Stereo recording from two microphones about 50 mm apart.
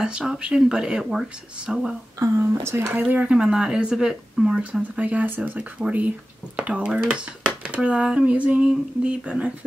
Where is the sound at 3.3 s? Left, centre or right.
Centre.